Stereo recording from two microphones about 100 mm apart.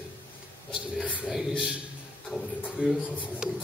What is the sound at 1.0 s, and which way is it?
Speech, 10° right (ahead or behind).